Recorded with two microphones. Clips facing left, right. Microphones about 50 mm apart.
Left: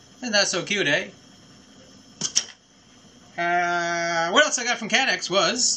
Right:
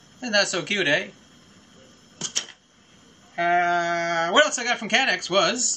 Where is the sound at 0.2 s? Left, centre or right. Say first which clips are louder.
Even; centre.